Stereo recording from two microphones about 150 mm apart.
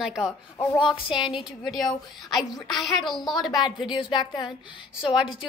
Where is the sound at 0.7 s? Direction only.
35° left (ahead or behind).